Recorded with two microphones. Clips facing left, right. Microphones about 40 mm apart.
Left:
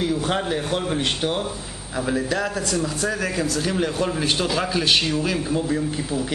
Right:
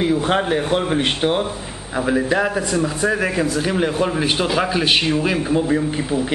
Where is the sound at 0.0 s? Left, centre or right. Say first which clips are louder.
Right 5 dB; right.